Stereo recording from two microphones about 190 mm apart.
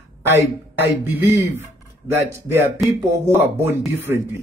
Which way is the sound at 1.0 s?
10° right (ahead or behind).